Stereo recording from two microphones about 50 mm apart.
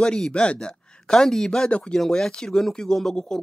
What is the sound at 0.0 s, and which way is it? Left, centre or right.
A man's voice, centre.